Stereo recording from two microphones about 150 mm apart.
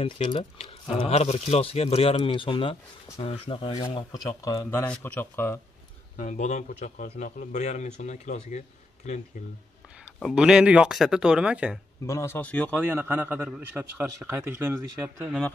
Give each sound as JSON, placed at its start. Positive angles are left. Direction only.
{"t": 0.0, "sound": "speech", "side_deg": 45}
{"t": 6.1, "sound": "speech", "side_deg": 55}
{"t": 10.3, "sound": "a man's voice", "side_deg": -5}
{"t": 12.1, "sound": "speech", "side_deg": 20}
{"t": 12.8, "sound": "a man's voice", "side_deg": -15}